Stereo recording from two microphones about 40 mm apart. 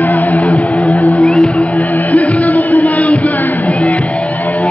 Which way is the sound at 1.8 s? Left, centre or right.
Left.